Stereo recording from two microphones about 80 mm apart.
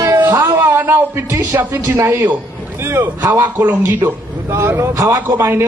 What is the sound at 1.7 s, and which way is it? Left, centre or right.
A man's voice, right.